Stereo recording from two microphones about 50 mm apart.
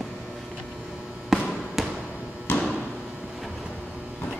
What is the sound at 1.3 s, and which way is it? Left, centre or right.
Basketball bounce, centre.